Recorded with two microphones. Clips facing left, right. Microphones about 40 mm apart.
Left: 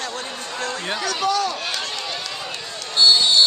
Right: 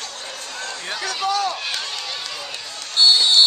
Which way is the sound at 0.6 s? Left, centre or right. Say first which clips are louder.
Left 4 dB; centre.